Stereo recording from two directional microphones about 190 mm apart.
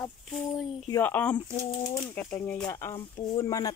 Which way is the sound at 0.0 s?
Centre (ahead or behind).